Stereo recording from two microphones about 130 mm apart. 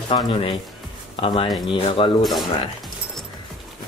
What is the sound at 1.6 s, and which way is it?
Speech, 40° left (ahead or behind).